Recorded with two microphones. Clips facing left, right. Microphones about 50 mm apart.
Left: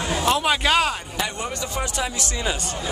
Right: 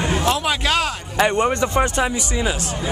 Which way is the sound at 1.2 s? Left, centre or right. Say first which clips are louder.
Right 16 dB; right.